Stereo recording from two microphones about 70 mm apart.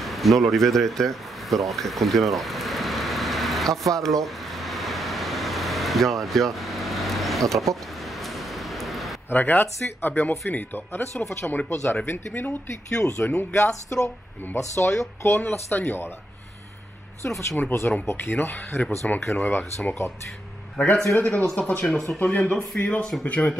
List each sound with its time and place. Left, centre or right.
0.0 s speech: centre
3.9 s vehicle: centre
8.2 s a sound: centre
9.3 s speech: left
11.4 s speech: centre
12.1 s speech: left
13.4 s speech: left
17.2 s a man's voice: left